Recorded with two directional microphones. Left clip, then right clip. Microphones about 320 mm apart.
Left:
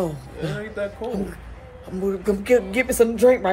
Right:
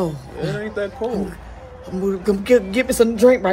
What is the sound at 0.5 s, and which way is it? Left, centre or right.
Speech, centre.